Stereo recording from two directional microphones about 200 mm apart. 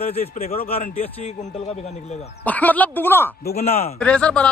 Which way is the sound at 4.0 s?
5° left (ahead or behind).